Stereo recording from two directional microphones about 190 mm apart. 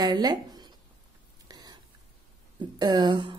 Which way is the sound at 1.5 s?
20° right (ahead or behind).